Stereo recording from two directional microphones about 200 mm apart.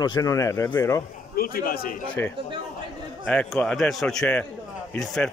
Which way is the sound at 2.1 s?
10° left (ahead or behind).